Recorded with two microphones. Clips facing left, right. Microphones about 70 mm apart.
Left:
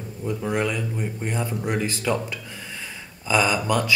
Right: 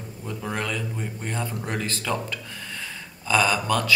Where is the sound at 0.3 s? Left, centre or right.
Centre.